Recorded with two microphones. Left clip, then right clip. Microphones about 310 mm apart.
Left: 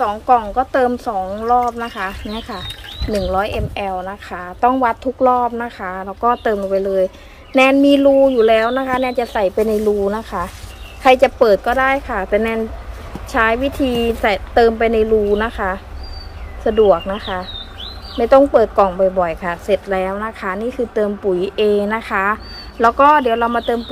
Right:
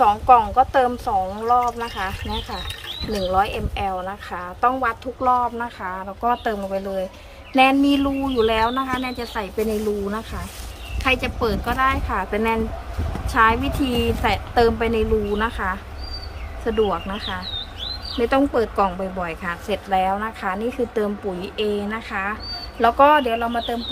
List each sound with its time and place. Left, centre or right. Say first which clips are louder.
0.0 s a woman's voice: right 1 dB; centre
11.1 s a woman's voice: left 11 dB; centre
16.9 s a woman's voice: left 9 dB; centre